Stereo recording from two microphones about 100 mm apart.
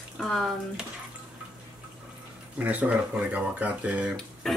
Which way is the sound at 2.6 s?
15° right (ahead or behind).